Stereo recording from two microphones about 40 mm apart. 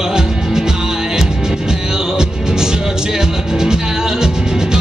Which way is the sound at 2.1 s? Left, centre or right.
Centre.